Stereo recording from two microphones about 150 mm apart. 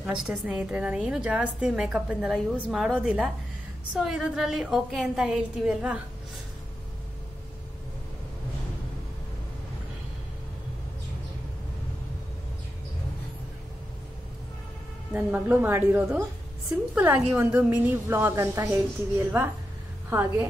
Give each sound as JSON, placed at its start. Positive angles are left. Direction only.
{"t": 0.0, "sound": "a woman's voice", "side_deg": -5}
{"t": 15.1, "sound": "a woman's voice", "side_deg": -10}
{"t": 17.4, "sound": "a woman's voice", "side_deg": -10}